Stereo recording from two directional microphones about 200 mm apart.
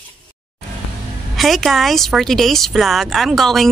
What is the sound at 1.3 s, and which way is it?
A woman's voice, centre (ahead or behind).